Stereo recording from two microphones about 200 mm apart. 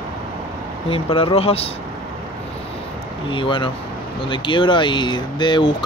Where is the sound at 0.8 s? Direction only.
30° left (ahead or behind).